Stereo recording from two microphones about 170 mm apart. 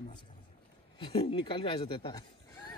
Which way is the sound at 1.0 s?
30° left (ahead or behind).